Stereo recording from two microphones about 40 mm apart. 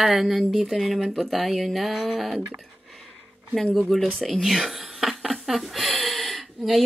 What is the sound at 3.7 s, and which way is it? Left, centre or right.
Speech, centre.